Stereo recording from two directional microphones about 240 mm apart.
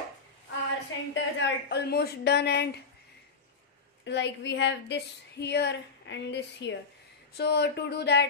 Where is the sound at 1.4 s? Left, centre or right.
Left.